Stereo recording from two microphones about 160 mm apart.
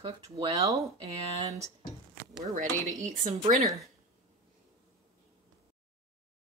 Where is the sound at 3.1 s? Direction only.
55° right (ahead or behind).